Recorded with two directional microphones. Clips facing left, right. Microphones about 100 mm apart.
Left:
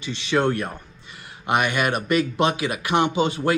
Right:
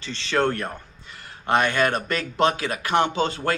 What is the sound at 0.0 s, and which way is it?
A man's voice, 15° left (ahead or behind).